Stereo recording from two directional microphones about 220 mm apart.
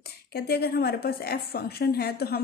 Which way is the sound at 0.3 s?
45° left (ahead or behind).